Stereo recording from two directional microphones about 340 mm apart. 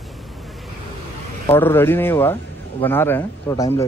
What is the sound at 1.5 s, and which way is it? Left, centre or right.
Speech, centre.